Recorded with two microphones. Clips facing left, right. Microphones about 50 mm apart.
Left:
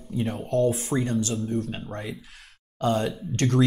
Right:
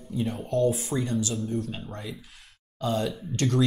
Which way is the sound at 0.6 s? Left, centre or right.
Left.